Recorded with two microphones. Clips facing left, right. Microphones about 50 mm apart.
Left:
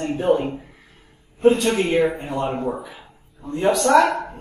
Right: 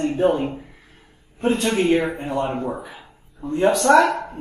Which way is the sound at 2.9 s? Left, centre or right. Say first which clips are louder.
Right 1 dB; centre.